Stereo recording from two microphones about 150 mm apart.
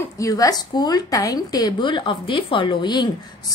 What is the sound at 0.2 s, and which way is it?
Speech, 25° left (ahead or behind).